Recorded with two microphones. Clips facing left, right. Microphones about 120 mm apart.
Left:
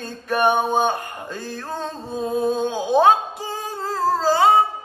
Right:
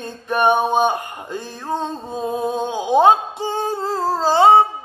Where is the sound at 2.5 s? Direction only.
15° right (ahead or behind).